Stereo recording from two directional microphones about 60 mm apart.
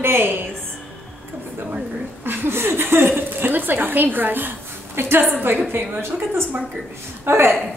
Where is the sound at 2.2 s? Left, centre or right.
Right.